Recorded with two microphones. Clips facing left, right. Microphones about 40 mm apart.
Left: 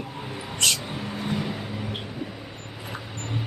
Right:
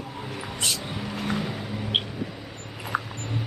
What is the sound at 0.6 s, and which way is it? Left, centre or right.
Speech, left.